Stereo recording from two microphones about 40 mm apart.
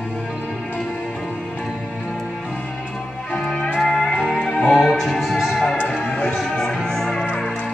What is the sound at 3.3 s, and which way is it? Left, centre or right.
Music, centre.